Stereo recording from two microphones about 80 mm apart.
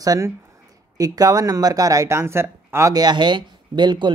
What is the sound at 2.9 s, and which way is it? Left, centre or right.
Speech, right.